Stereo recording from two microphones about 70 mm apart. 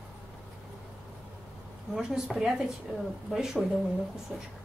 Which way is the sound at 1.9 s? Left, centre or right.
Centre.